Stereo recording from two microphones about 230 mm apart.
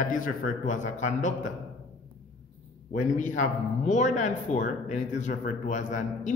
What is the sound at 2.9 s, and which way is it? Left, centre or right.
Speech, left.